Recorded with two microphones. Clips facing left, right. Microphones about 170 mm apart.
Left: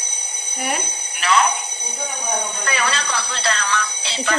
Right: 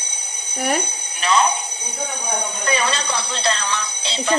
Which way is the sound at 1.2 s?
20° right (ahead or behind).